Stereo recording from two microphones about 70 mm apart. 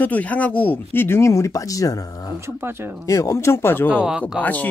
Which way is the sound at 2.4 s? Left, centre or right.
Right.